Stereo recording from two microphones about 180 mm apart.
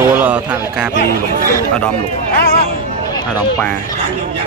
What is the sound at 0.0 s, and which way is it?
Speech, 10° right (ahead or behind).